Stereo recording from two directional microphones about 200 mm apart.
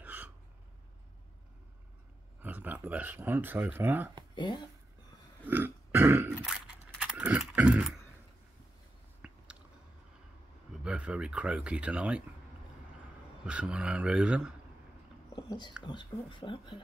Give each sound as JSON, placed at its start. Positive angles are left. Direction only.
{"t": 0.0, "sound": "a sound", "side_deg": -10}
{"t": 2.4, "sound": "speech", "side_deg": -10}
{"t": 5.5, "sound": "a sound", "side_deg": -10}
{"t": 9.2, "sound": "biting", "side_deg": -5}
{"t": 10.8, "sound": "speech", "side_deg": -5}
{"t": 13.5, "sound": "speech", "side_deg": -5}
{"t": 15.3, "sound": "speech", "side_deg": 20}